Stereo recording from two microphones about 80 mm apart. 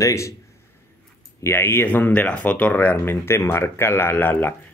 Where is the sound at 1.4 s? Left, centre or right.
Left.